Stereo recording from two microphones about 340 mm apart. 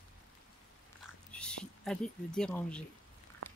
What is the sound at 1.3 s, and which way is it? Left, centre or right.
Speech, centre.